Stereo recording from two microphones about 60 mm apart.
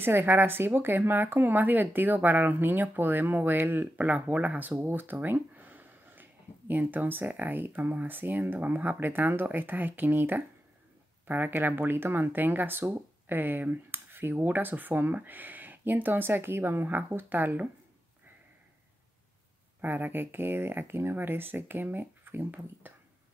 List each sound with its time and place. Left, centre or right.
0.0 s speech: right
4.8 s a sound: right
6.7 s speech: right
19.8 s speech: right